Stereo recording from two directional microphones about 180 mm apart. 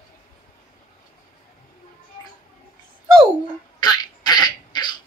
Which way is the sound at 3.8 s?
20° left (ahead or behind).